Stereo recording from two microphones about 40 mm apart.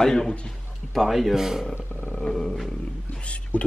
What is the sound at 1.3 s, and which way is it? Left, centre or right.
Speech, centre.